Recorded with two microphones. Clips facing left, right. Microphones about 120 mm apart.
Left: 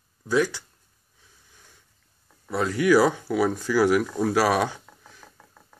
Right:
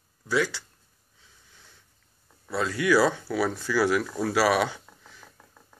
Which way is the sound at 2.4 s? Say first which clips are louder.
Left 4 dB; 15° left (ahead or behind).